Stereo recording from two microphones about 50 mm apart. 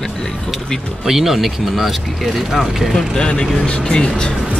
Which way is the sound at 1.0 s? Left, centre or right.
Centre.